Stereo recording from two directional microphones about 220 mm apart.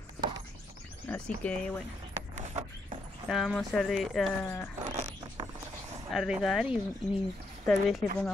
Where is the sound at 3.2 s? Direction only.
Centre (ahead or behind).